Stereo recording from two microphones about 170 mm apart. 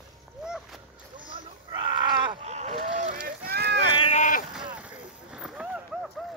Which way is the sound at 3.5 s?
80° right.